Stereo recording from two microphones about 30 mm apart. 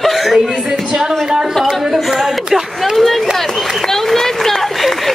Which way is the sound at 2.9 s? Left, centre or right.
Centre.